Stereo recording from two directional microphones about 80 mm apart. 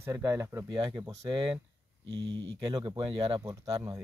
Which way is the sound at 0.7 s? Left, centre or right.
Right.